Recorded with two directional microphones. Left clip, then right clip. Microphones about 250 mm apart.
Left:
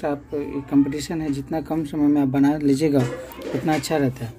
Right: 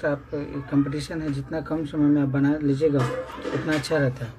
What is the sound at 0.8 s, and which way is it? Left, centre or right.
Speech, left.